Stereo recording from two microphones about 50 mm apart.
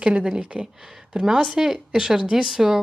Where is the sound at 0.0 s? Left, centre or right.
Centre.